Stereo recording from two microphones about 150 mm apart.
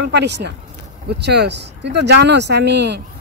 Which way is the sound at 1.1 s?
90° right.